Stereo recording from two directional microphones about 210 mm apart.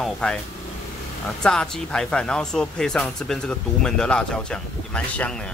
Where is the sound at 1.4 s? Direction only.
5° left (ahead or behind).